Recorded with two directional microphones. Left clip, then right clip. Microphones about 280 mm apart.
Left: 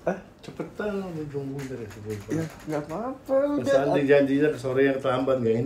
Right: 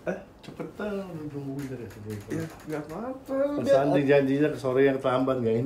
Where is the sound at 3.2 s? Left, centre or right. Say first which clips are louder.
Left 3 dB; centre.